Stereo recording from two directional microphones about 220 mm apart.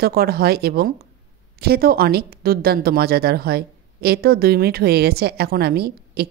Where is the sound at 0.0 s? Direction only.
45° right (ahead or behind).